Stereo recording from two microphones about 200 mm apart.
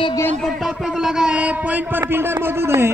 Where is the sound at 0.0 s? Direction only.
15° left (ahead or behind).